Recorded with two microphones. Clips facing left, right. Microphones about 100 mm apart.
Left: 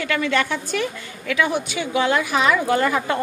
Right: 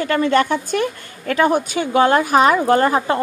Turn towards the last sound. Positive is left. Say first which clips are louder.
# right 4 dB
turn(degrees=-35)  # may be behind; listen again after turning